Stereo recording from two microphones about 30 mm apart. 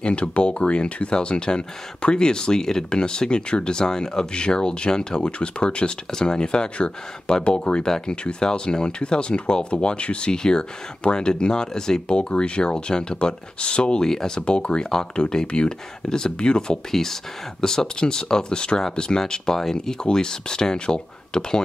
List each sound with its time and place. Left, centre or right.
0.0 s speech: left
1.1 s speech: left
10.3 s speech: left
12.1 s speech: left
14.0 s speech: centre
14.4 s speech: left
16.1 s speech: left
16.9 s speech: centre